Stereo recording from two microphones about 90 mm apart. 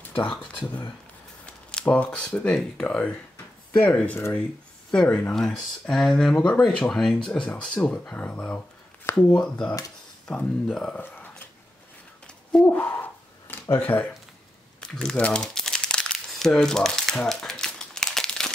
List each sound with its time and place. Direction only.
1.4 s speech: 10° left (ahead or behind)
9.1 s speech: 30° left (ahead or behind)
9.4 s speech: 10° left (ahead or behind)
11.0 s a sound: 20° left (ahead or behind)
12.6 s a sound: 20° left (ahead or behind)
14.8 s crumpling: 10° left (ahead or behind)